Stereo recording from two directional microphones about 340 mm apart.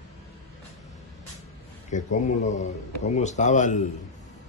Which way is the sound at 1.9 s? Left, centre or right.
Left.